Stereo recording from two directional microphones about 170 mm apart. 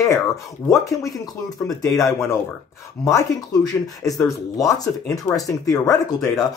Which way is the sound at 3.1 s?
20° left (ahead or behind).